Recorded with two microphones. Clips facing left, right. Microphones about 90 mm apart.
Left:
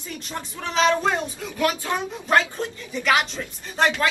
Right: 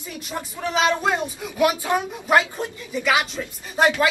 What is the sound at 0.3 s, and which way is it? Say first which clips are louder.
A man's voice: right 5 dB; 10° right (ahead or behind).